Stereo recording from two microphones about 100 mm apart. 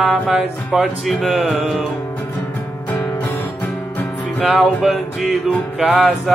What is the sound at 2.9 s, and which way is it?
Music, 15° left (ahead or behind).